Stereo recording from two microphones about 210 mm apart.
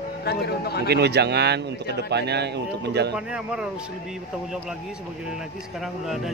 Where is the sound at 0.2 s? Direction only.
50° left (ahead or behind).